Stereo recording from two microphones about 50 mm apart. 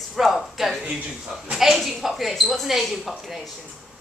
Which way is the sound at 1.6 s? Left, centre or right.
Centre.